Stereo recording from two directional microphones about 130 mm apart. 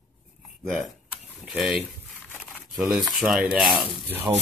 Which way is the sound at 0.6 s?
Centre (ahead or behind).